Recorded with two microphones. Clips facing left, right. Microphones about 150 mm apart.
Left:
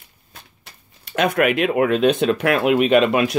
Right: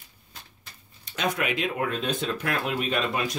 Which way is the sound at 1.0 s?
65° left (ahead or behind).